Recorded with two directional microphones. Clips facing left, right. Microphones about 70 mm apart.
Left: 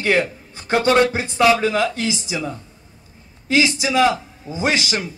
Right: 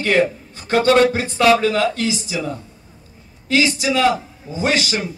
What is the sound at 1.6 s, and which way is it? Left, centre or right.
Speech, centre.